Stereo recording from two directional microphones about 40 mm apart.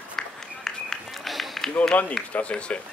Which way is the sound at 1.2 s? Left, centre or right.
Centre.